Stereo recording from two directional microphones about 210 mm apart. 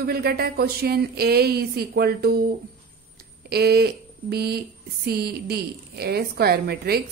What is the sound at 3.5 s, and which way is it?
A woman's voice, 50° right (ahead or behind).